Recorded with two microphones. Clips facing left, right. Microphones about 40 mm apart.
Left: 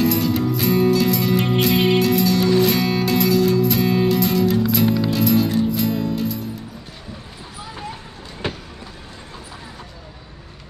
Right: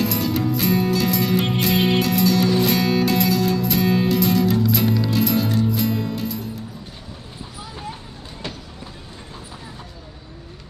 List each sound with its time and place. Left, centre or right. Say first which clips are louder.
0.0 s music: left 3 dB; centre
8.4 s vehicle: left 6 dB; left